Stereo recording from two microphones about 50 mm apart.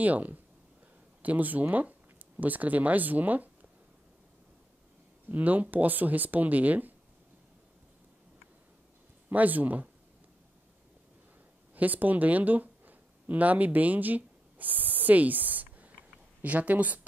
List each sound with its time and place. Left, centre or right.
0.0 s speech: right
5.3 s speech: right
9.3 s speech: right
11.7 s a sound: right
16.4 s speech: right